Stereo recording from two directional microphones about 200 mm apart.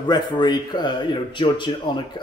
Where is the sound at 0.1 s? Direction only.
20° left (ahead or behind).